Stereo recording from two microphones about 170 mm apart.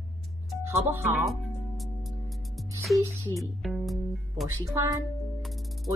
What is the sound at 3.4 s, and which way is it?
Speech, centre (ahead or behind).